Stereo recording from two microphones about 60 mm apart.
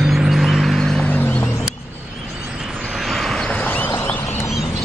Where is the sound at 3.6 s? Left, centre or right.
Left.